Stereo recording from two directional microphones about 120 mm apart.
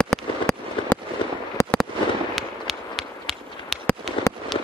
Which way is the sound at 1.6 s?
20° left (ahead or behind).